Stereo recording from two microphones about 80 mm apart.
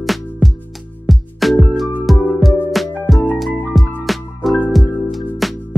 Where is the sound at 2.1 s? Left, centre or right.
Centre.